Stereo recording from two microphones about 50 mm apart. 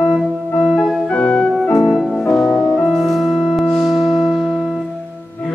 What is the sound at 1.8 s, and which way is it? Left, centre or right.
Music, centre.